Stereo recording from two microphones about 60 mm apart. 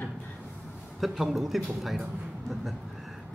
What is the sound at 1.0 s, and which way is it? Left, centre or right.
A man's voice, centre.